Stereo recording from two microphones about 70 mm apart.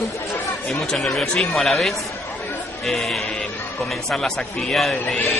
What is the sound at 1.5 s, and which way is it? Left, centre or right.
Speech, centre.